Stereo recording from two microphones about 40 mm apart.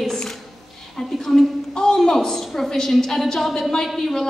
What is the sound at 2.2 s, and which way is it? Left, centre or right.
A woman's voice, centre.